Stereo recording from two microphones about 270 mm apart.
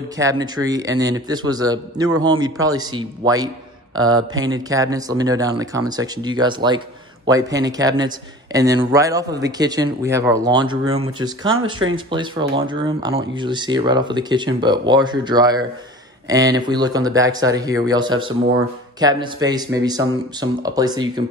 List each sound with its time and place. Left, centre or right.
0.2 s speech: centre